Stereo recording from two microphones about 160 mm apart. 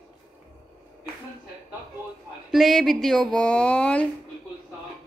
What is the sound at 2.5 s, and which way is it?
Speech, centre (ahead or behind).